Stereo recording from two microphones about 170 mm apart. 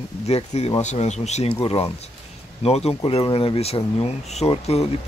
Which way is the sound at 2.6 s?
35° left (ahead or behind).